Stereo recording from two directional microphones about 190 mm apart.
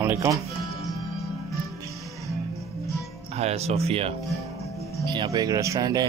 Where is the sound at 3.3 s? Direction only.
35° right (ahead or behind).